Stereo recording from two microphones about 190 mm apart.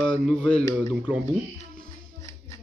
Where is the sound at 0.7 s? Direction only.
15° left (ahead or behind).